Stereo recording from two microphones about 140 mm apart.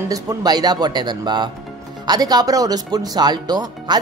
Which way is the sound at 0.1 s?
25° right (ahead or behind).